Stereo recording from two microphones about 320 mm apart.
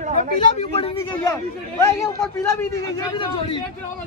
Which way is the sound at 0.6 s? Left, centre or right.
Centre.